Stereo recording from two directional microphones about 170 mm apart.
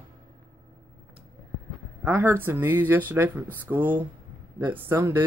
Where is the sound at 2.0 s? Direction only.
10° right (ahead or behind).